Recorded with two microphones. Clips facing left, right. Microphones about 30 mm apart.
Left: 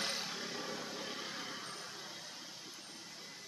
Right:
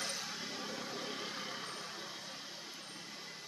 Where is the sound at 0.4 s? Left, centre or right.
Centre.